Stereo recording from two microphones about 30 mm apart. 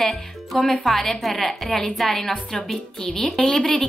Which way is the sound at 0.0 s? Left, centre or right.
Centre.